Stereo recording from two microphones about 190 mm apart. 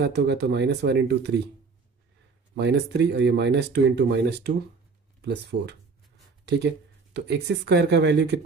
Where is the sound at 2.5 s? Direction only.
65° right (ahead or behind).